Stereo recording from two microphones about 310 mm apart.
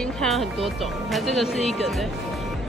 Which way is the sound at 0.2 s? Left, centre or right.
Centre.